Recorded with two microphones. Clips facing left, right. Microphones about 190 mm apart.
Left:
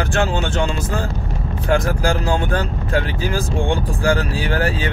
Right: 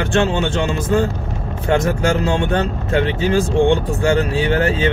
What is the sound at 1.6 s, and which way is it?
Speech, 25° right (ahead or behind).